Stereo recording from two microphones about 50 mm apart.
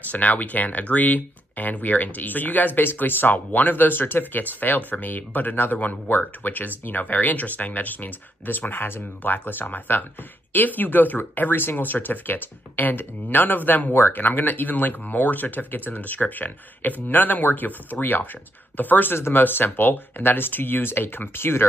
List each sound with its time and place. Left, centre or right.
0.1 s speech: left
19.1 s speech: left
19.4 s speech: left